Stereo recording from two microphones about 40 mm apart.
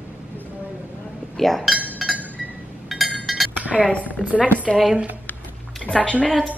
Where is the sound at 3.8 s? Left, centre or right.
Left.